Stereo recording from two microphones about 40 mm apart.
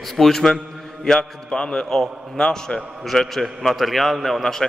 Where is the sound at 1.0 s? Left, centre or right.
Centre.